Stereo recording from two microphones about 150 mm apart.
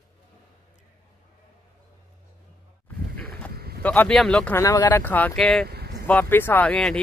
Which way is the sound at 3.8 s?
10° left (ahead or behind).